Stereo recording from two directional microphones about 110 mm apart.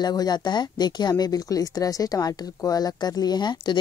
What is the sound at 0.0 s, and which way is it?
Speech, 40° left (ahead or behind).